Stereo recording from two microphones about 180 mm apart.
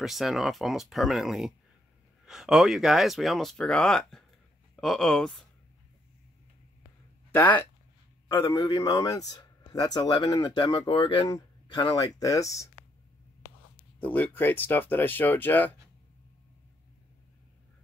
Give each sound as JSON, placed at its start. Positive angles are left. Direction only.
{"t": 0.0, "sound": "speech", "side_deg": 0}
{"t": 7.3, "sound": "speech", "side_deg": 10}
{"t": 8.5, "sound": "speech", "side_deg": 20}
{"t": 13.9, "sound": "speech", "side_deg": 10}